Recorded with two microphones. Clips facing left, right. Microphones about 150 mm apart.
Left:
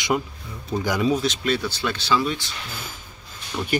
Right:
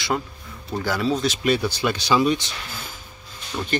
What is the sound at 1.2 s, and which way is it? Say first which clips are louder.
Speech: right 2 dB; 10° right (ahead or behind).